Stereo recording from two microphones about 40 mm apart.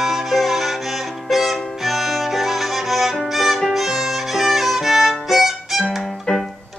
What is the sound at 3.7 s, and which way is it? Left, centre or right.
Violin, centre.